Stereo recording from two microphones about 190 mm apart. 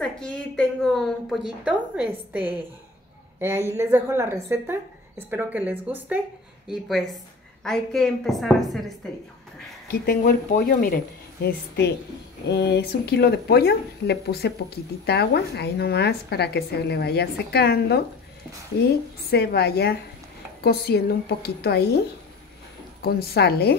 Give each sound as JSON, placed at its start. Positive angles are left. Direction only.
{"t": 0.0, "sound": "a woman's voice", "side_deg": 5}
{"t": 9.8, "sound": "speech", "side_deg": 50}
{"t": 11.4, "sound": "a woman's voice", "side_deg": 60}
{"t": 19.3, "sound": "a woman's voice", "side_deg": 60}
{"t": 23.0, "sound": "a woman's voice", "side_deg": 55}